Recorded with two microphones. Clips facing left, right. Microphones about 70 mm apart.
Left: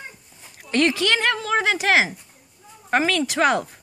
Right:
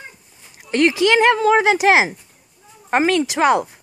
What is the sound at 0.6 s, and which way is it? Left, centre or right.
Speech, centre.